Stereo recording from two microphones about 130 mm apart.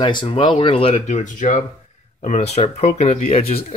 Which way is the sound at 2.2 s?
60° left (ahead or behind).